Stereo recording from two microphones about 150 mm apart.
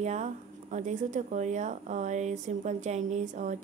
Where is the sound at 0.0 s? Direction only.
50° right (ahead or behind).